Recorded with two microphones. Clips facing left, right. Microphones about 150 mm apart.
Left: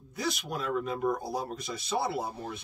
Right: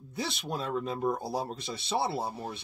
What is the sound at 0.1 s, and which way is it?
Speech, 30° right (ahead or behind).